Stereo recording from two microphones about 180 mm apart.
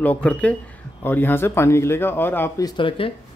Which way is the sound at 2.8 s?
30° left (ahead or behind).